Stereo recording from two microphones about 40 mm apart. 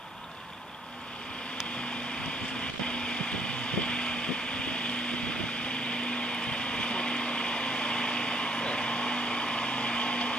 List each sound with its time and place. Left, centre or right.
2.9 s vehicle: left